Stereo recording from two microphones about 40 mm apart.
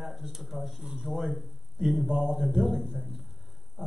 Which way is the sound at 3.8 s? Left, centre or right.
Right.